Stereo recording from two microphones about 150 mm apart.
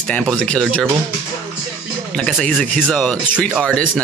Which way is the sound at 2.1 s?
5° left (ahead or behind).